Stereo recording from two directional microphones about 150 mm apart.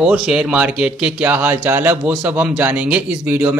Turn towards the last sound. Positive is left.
turn(degrees=-10)  # may be behind; listen again after turning